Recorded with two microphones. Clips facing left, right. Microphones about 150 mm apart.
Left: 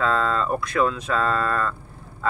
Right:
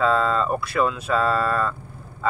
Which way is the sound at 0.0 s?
5° right (ahead or behind).